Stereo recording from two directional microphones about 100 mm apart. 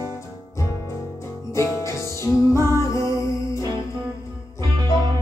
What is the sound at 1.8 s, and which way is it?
Music, 30° left (ahead or behind).